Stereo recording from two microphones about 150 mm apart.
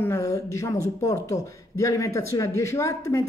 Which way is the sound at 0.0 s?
20° left (ahead or behind).